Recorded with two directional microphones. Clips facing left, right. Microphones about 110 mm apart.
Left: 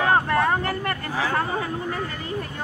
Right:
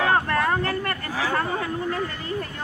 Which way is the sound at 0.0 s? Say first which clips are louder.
Left 1 dB; 20° left (ahead or behind).